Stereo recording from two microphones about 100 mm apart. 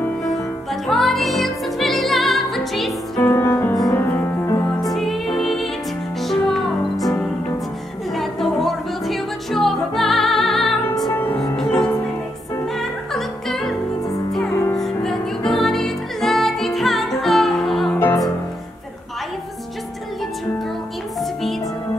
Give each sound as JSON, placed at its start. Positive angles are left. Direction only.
{"t": 0.8, "sound": "music", "side_deg": 0}
{"t": 3.2, "sound": "music", "side_deg": 25}
{"t": 4.8, "sound": "music", "side_deg": 0}
{"t": 17.9, "sound": "music", "side_deg": 25}
{"t": 21.2, "sound": "music", "side_deg": 0}